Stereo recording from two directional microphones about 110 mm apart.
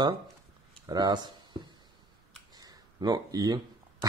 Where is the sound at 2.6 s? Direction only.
35° right (ahead or behind).